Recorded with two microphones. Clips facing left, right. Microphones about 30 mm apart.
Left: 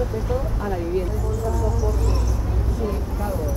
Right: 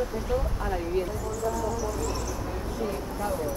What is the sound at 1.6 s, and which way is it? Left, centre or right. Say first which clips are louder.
Speech: left 4 dB; centre.